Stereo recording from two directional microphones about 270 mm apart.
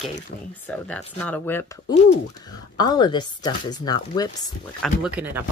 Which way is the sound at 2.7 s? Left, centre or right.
Centre.